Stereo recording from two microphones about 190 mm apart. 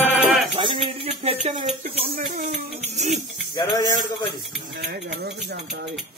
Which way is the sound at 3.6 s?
20° left (ahead or behind).